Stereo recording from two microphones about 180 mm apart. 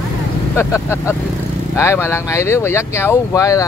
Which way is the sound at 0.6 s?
15° left (ahead or behind).